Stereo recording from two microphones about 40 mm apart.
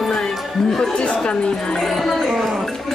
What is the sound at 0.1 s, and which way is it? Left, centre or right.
Music, centre.